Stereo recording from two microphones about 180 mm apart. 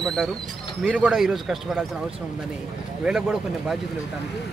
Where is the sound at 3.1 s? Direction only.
5° right (ahead or behind).